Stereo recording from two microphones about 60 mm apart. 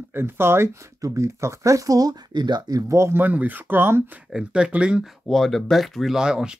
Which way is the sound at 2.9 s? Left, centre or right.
Right.